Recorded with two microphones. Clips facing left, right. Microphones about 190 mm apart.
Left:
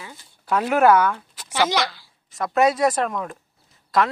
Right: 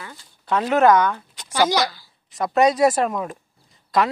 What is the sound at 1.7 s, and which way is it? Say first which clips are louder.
Speech: right 2 dB; centre (ahead or behind).